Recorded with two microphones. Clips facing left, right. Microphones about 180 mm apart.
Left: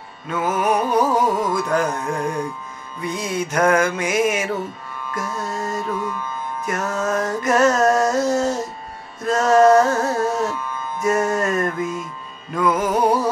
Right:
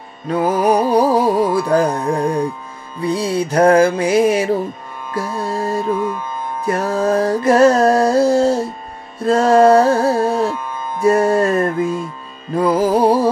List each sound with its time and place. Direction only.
0.3 s music: 35° right (ahead or behind)